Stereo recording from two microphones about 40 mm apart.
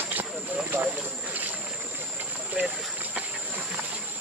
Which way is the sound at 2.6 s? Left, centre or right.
Right.